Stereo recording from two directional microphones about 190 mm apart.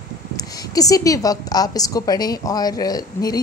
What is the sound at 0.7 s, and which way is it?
A woman's voice, 20° left (ahead or behind).